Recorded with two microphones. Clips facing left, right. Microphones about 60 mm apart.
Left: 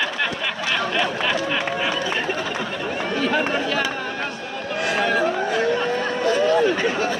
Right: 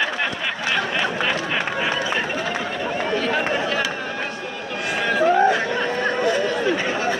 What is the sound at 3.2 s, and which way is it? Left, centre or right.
Speech, centre.